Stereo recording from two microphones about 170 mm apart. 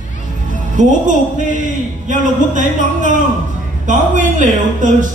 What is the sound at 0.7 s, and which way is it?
Speech, 45° right (ahead or behind).